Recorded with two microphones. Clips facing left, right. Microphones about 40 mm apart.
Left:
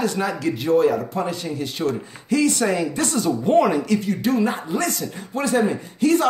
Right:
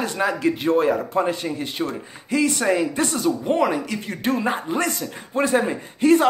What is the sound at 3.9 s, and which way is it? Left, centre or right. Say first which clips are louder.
A man's voice: left 3 dB; right.